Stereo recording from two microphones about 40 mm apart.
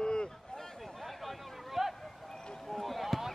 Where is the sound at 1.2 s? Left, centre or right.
Centre.